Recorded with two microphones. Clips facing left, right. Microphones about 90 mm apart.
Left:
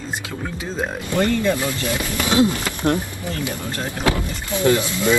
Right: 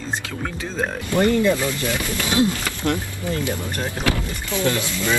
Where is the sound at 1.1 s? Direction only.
20° right (ahead or behind).